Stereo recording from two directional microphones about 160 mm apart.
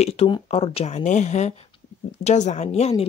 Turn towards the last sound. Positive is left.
turn(degrees=45)  # may be behind; listen again after turning